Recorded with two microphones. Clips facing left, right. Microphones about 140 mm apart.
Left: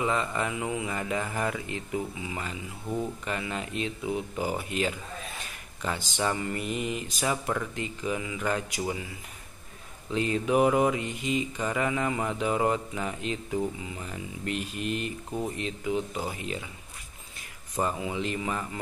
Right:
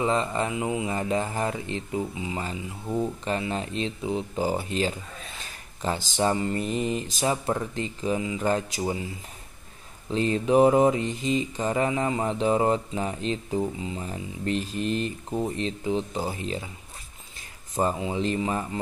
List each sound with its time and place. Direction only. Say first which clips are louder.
0.0 s speech: right 3 dB; 30° right (ahead or behind)
3.3 s mantra: right 4 dB; 30° right (ahead or behind)
10.1 s mantra: right 4 dB; 30° right (ahead or behind)
15.3 s speech: right 4 dB; 30° right (ahead or behind)
17.7 s speech: right 4 dB; 25° right (ahead or behind)